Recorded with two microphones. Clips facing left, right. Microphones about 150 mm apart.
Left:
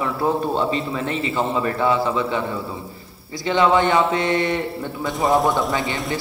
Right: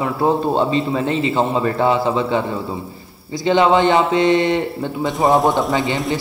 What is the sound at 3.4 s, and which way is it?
A man's voice, 30° right (ahead or behind).